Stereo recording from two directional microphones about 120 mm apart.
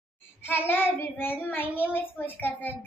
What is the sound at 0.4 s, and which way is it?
A child's voice, 20° left (ahead or behind).